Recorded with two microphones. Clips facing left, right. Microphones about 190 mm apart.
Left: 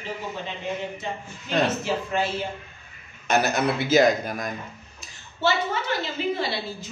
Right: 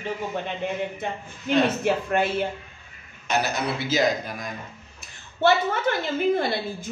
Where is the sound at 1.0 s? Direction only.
55° right (ahead or behind).